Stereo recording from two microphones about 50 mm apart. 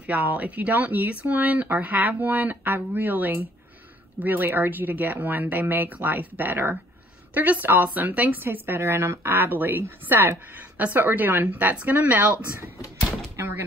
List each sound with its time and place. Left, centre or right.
0.0 s speech: right
9.3 s a woman's voice: right
10.5 s speech: right